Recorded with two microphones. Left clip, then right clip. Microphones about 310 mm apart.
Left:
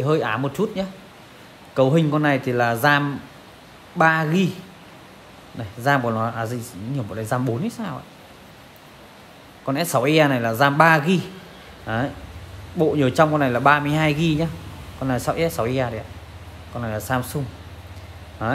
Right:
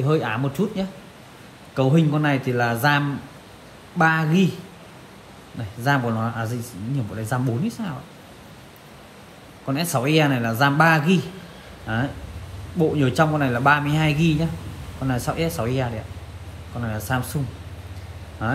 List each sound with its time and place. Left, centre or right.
0.0 s a man's voice: left
4.0 s speech: left
5.8 s a man's voice: left
9.7 s a man's voice: left
18.4 s a man's voice: left